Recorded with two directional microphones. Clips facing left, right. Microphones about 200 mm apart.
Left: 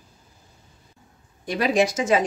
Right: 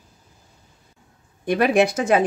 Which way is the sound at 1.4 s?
55° right (ahead or behind).